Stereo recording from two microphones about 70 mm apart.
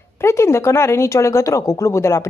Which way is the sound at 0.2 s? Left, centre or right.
Left.